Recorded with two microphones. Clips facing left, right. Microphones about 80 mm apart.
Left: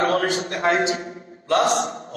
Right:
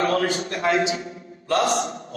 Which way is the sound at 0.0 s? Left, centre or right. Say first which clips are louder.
Left 1 dB; left.